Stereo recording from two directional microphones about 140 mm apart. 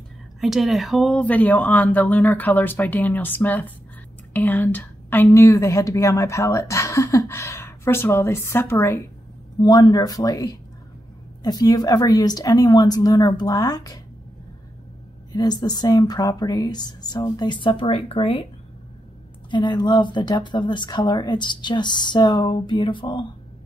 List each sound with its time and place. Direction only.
0.4 s a woman's voice: centre (ahead or behind); by 9.0 s 20° left (ahead or behind)
9.6 s a woman's voice: 30° left (ahead or behind)
15.3 s a woman's voice: 30° left (ahead or behind)
19.5 s speech: 30° left (ahead or behind)